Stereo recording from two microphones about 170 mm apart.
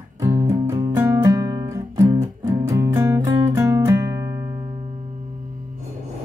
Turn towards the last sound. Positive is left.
turn(degrees=-20)  # may be behind; listen again after turning